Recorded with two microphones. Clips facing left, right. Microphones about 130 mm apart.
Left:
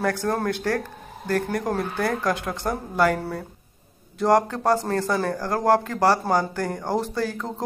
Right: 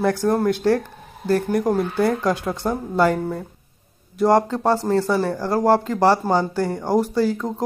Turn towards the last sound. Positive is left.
turn(degrees=-15)  # may be behind; listen again after turning